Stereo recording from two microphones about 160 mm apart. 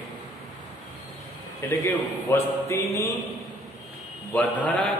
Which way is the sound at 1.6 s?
15° left (ahead or behind).